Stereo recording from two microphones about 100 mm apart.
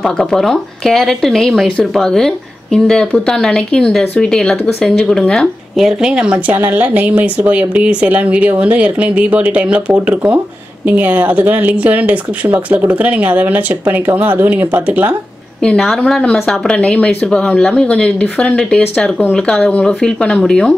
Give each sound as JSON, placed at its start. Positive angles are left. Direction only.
{"t": 0.0, "sound": "speech", "side_deg": 5}
{"t": 5.8, "sound": "speech", "side_deg": -5}
{"t": 15.6, "sound": "speech", "side_deg": 10}